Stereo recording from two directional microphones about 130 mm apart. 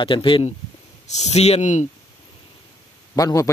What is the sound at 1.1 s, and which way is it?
Speech, 55° left (ahead or behind).